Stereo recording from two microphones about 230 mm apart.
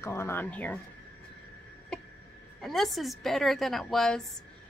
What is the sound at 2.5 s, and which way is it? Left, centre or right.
A woman's voice, centre.